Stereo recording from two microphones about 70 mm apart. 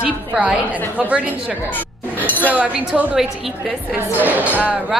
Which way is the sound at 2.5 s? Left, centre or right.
Centre.